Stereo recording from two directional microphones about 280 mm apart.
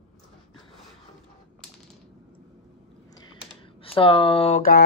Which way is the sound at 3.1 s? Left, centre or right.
Centre.